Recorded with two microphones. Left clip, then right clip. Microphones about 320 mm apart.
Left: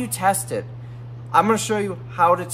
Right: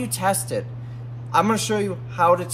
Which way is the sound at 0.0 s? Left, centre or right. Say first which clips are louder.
Left 2 dB; centre.